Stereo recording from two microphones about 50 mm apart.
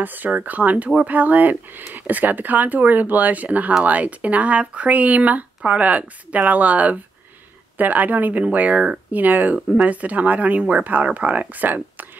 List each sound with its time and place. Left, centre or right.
0.0 s speech: right